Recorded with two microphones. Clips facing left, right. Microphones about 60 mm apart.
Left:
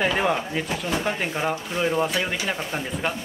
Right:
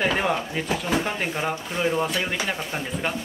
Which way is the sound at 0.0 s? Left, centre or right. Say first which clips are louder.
Left 1 dB; centre.